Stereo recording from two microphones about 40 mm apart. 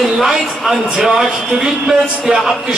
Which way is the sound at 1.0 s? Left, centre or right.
Centre.